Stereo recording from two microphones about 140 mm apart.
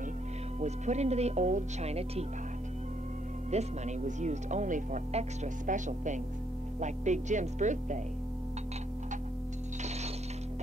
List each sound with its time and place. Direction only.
0.6 s speech: 55° right (ahead or behind)
3.5 s speech: 55° right (ahead or behind)